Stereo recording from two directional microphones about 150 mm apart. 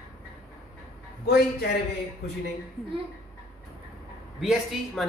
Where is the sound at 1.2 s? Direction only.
90° left.